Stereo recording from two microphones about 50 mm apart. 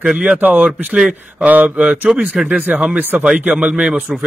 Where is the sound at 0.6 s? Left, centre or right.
Centre.